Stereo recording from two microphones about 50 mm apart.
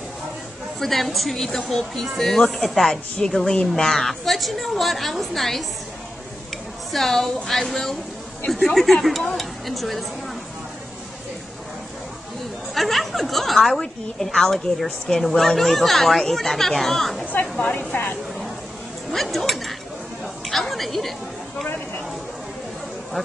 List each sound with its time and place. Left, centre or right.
0.7 s a woman's voice: centre
6.9 s a woman's voice: centre
12.7 s a woman's voice: centre
17.3 s a woman's voice: left
19.0 s a woman's voice: centre